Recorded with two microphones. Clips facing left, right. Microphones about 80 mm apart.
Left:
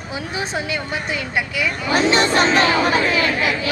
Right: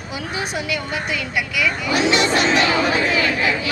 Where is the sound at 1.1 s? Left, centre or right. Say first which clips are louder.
Left 2 dB; left.